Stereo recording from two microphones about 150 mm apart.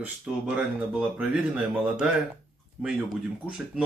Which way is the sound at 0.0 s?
10° right (ahead or behind).